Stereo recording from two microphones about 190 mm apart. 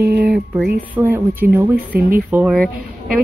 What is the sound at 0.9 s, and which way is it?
Speech, 10° right (ahead or behind).